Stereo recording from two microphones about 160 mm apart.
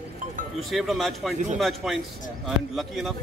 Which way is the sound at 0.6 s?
Centre (ahead or behind).